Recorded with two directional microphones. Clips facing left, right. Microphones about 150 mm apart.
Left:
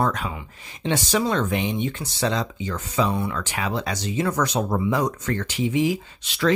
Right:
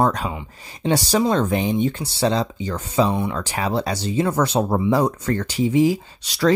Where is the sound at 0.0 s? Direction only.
35° right (ahead or behind).